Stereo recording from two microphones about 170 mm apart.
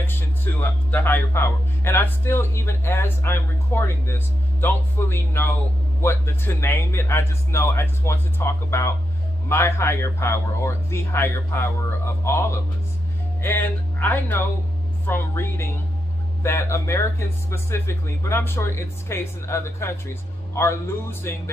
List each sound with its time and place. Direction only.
0.0 s speech: 10° left (ahead or behind)